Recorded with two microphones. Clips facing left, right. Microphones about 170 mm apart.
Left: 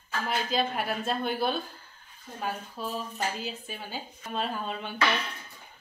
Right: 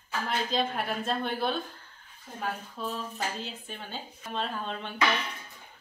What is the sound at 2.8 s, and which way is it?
A woman's voice, 5° left (ahead or behind).